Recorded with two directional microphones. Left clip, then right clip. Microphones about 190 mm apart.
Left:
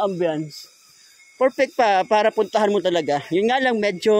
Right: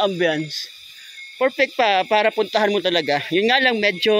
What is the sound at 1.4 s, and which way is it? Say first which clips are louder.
Speech: even; 25° left (ahead or behind).